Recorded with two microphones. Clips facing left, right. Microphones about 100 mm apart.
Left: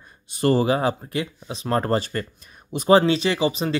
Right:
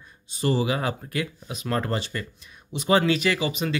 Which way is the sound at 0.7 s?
30° left (ahead or behind).